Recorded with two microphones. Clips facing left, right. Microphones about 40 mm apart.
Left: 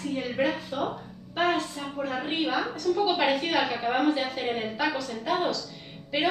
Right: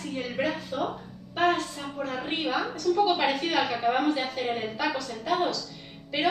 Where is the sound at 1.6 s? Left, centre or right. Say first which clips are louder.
Left 1 dB; centre.